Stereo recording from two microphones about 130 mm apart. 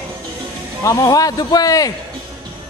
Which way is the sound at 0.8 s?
25° left (ahead or behind).